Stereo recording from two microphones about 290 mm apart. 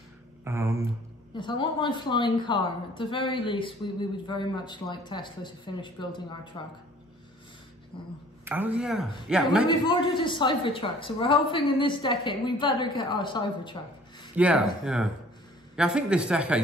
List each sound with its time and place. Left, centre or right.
0.5 s a sound: centre
1.3 s a woman's voice: centre
8.5 s speech: centre
9.7 s a woman's voice: centre
14.3 s speech: centre